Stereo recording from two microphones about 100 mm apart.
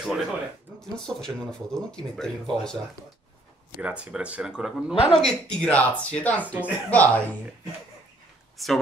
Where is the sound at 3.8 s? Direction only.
10° right (ahead or behind).